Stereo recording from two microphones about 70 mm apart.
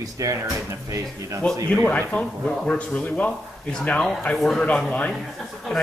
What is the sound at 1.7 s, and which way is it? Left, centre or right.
Speech, centre.